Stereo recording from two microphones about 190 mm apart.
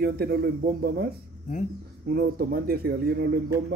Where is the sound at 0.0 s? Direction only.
55° right (ahead or behind).